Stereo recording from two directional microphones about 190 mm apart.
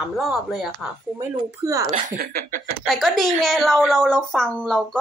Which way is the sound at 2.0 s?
50° right (ahead or behind).